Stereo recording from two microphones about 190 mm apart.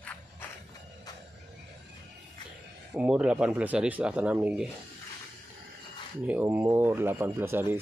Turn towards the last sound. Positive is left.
turn(degrees=-10)  # may be behind; listen again after turning